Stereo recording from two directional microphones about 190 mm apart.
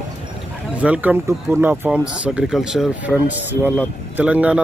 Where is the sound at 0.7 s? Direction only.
5° right (ahead or behind).